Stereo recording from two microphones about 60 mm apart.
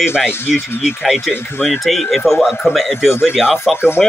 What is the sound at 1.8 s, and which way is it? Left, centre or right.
Speech, centre.